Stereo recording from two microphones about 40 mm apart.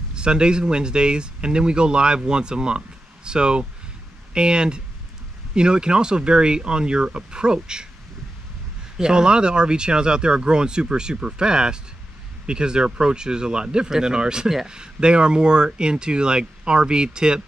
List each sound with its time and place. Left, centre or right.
0.1 s speech: right
8.9 s speech: centre